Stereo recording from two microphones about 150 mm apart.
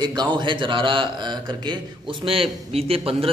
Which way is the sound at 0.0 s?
30° right (ahead or behind).